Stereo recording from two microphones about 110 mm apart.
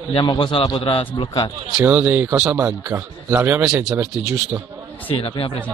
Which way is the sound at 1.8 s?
15° right (ahead or behind).